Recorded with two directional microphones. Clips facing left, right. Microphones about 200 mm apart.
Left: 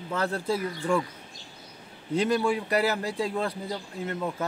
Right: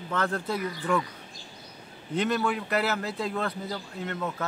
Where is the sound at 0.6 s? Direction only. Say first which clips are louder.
Right 1 dB; 30° left (ahead or behind).